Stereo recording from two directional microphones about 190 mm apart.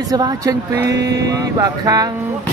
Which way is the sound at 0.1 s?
20° right (ahead or behind).